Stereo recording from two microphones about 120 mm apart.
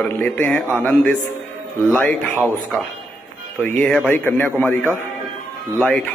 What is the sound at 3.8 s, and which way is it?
Speech, 10° left (ahead or behind).